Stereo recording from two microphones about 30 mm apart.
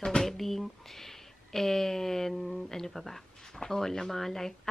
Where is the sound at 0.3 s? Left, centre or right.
Centre.